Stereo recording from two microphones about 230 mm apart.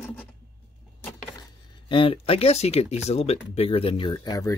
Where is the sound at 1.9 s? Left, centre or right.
Left.